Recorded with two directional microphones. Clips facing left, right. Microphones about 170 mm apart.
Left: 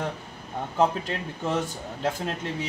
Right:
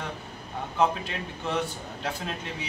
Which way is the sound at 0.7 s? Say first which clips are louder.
Left 2 dB; 40° left (ahead or behind).